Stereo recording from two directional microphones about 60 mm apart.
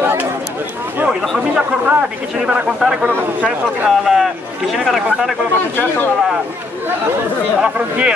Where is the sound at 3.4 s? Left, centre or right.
Right.